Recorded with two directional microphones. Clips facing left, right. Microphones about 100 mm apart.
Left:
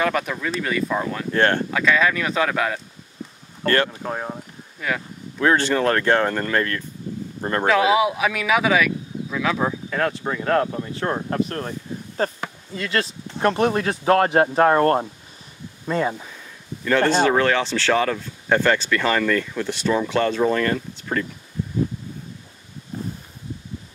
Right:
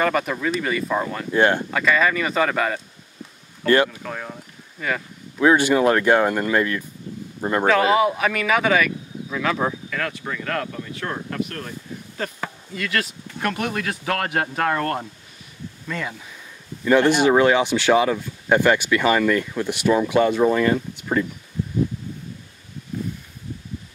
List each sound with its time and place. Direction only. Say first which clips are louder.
0.0 s speech: right 1 dB; centre (ahead or behind)
1.7 s speech: even; centre (ahead or behind)
3.6 s speech: right 3 dB; 15° right (ahead or behind)
3.9 s speech: left 4 dB; 25° left (ahead or behind)
4.7 s speech: even; centre (ahead or behind)
5.4 s speech: right 3 dB; 10° right (ahead or behind)
7.6 s speech: even; centre (ahead or behind)
9.8 s speech: left 5 dB; 30° left (ahead or behind)
16.8 s speech: right 2 dB; 15° right (ahead or behind)